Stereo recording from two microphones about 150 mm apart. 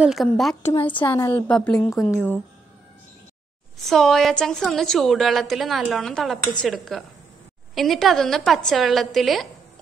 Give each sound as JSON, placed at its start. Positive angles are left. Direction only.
{"t": 0.0, "sound": "a woman's voice", "side_deg": 0}
{"t": 0.6, "sound": "a woman's voice", "side_deg": 15}
{"t": 1.5, "sound": "a woman's voice", "side_deg": 5}
{"t": 3.7, "sound": "a woman's voice", "side_deg": 0}